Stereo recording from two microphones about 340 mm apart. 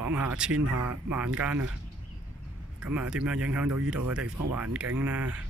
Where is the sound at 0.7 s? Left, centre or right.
Right.